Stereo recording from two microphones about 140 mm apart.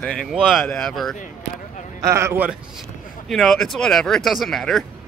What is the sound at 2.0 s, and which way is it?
Speech, 20° right (ahead or behind).